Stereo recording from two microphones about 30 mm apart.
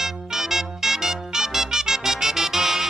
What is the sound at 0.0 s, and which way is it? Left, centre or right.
Music, centre.